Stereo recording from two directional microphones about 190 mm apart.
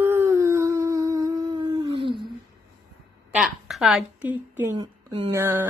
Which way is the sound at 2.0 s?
25° right (ahead or behind).